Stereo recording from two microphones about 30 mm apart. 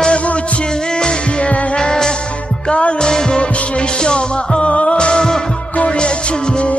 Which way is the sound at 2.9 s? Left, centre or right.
Left.